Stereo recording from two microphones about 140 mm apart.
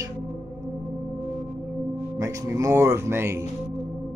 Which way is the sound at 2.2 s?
20° right (ahead or behind).